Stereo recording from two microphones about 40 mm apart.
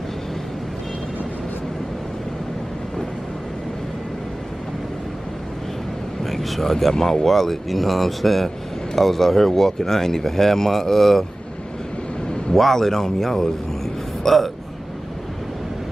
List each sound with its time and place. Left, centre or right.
6.2 s speech: centre
12.5 s speech: centre